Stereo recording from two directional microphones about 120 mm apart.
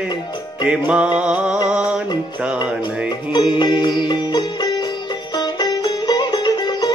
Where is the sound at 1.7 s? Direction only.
10° right (ahead or behind).